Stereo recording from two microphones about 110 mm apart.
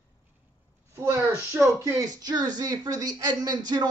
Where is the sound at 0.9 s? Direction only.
25° right (ahead or behind).